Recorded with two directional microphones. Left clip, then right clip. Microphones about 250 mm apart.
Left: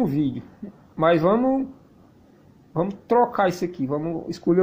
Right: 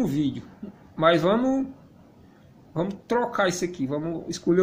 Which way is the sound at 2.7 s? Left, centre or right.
Centre.